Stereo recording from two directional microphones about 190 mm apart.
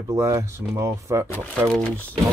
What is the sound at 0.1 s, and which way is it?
Speech, 15° right (ahead or behind).